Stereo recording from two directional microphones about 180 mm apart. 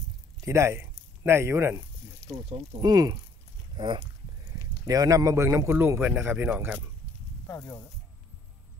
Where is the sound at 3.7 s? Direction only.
25° right (ahead or behind).